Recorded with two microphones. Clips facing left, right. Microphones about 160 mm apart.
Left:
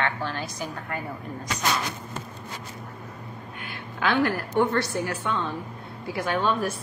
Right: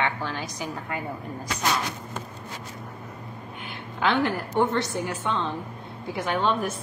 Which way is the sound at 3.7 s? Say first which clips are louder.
Right 1 dB; 20° right (ahead or behind).